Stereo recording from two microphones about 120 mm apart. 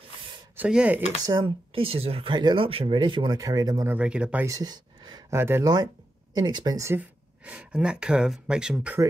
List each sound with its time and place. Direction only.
0.6 s speech: 10° right (ahead or behind)
1.2 s speech: 35° right (ahead or behind)
1.7 s speech: 50° right (ahead or behind)
3.3 s speech: 30° right (ahead or behind)
3.8 s speech: 15° right (ahead or behind)
4.5 s a sound: 35° right (ahead or behind)
5.3 s speech: 20° right (ahead or behind)
6.3 s speech: 35° right (ahead or behind)
6.9 s speech: 10° right (ahead or behind)